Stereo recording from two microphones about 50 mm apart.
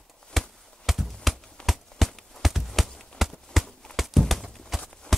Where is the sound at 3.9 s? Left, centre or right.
Centre.